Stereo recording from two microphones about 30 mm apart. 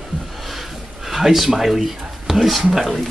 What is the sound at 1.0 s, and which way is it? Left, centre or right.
Speech, centre.